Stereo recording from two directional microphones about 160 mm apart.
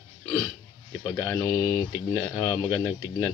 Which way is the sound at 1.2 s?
10° left (ahead or behind).